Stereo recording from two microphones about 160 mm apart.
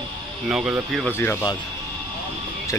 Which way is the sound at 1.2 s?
15° left (ahead or behind).